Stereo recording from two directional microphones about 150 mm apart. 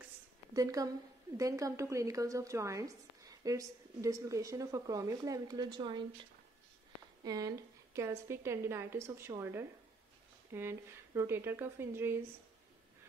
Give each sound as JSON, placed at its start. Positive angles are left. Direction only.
{"t": 0.6, "sound": "a woman's voice", "side_deg": -25}
{"t": 7.2, "sound": "a woman's voice", "side_deg": -25}